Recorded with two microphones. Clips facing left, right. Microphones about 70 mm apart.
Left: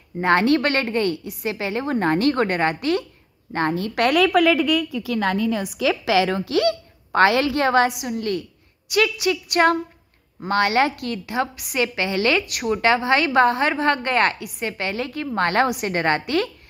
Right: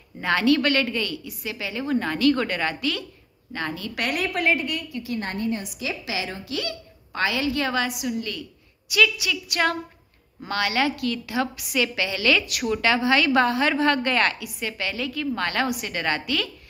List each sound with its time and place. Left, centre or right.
0.2 s a woman's voice: left
1.2 s a woman's voice: left